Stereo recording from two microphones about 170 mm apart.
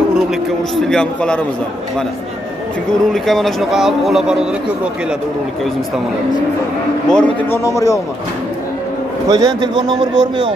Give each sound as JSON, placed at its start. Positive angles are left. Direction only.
{"t": 0.7, "sound": "speech", "side_deg": 5}
{"t": 3.1, "sound": "speech", "side_deg": 0}
{"t": 7.1, "sound": "speech", "side_deg": 5}
{"t": 7.6, "sound": "a man's voice", "side_deg": 20}
{"t": 9.3, "sound": "a man's voice", "side_deg": -25}